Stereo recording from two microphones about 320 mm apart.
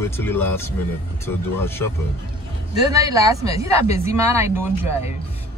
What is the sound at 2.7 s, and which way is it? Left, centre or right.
Speech, centre.